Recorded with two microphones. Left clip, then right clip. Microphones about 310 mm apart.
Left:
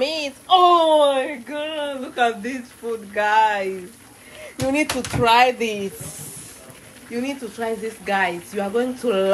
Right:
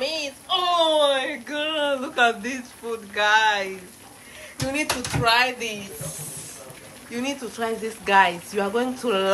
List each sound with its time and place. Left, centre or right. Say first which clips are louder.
0.0 s child singing: left 4 dB; left
0.7 s a sound: left 4 dB; centre
3.2 s speech: left 1 dB; centre
4.7 s speech: left 3 dB; left
7.1 s speech: left 2 dB; centre